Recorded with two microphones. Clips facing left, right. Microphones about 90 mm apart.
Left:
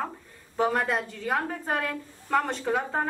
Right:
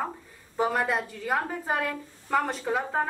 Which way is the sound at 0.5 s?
Centre (ahead or behind).